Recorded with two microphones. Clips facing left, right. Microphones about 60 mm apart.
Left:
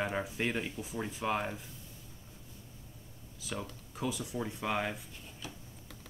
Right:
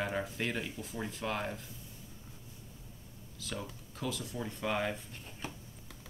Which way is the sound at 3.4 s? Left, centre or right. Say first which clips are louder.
Left 1 dB; centre.